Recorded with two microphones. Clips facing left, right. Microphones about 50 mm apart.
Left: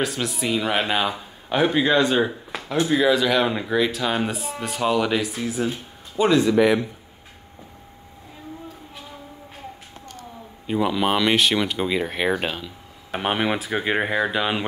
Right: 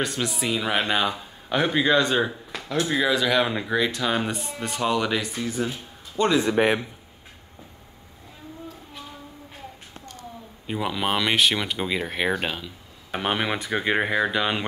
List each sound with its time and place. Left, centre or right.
0.0 s speech: centre
6.4 s a man's voice: right
10.7 s speech: centre